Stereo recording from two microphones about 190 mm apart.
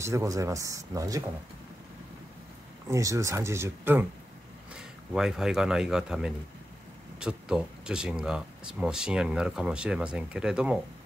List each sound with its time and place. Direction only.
0.0 s speech: 15° right (ahead or behind)
2.9 s speech: 15° right (ahead or behind)